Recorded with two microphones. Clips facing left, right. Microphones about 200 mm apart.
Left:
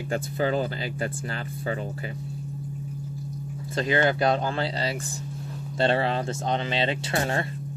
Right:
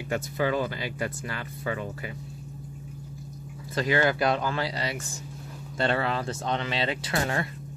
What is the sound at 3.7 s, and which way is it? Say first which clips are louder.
Speech: left 1 dB; 25° left (ahead or behind).